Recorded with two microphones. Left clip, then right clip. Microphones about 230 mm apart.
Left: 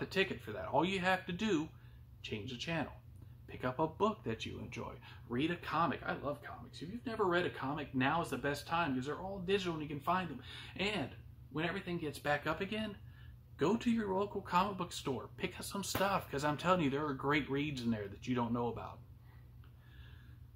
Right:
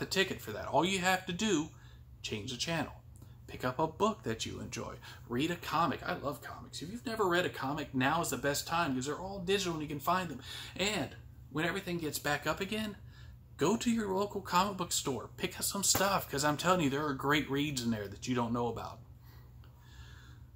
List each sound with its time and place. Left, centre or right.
0.0 s speech: centre
5.3 s speech: centre